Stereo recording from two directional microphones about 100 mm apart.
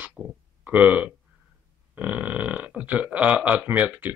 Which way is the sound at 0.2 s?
15° right (ahead or behind).